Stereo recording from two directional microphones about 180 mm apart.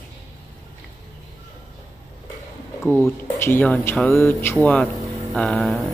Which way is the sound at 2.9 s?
10° left (ahead or behind).